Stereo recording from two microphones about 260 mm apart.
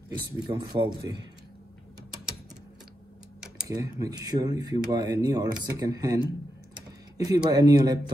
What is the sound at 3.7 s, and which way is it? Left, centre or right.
Speech, centre.